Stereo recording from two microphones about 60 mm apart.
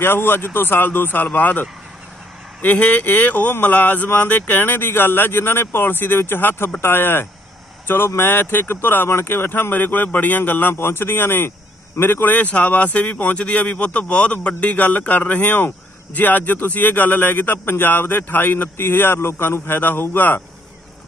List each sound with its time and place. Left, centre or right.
0.0 s speech: left